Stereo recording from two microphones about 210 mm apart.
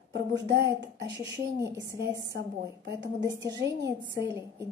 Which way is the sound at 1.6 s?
55° right (ahead or behind).